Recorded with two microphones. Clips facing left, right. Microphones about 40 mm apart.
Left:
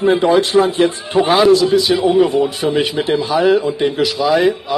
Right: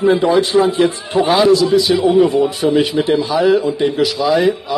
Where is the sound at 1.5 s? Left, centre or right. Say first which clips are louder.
Even; left.